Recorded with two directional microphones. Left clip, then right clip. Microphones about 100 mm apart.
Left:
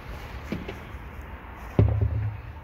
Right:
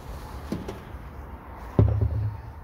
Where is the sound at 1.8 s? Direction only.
90° right.